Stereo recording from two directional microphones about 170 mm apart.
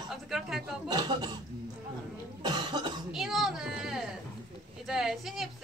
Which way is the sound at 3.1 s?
Centre (ahead or behind).